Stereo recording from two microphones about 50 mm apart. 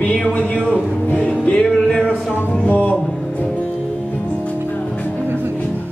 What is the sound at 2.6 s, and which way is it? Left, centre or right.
Music, left.